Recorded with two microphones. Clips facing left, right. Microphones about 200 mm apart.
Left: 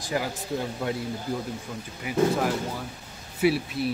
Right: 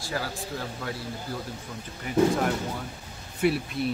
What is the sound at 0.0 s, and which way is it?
Speech, 20° left (ahead or behind).